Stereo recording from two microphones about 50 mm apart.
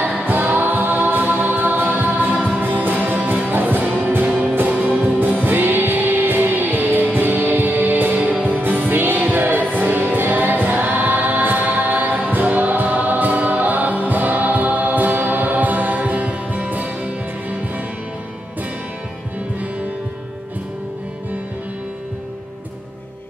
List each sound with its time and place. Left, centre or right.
0.3 s music: right